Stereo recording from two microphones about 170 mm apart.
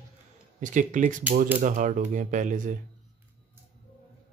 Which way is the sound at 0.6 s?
50° right (ahead or behind).